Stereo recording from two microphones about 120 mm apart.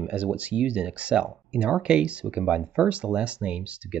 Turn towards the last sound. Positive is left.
turn(degrees=-10)  # may be behind; listen again after turning